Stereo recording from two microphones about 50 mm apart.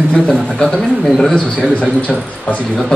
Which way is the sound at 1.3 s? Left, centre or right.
Left.